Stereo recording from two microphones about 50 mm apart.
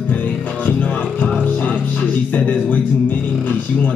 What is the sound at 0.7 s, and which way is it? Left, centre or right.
Music, left.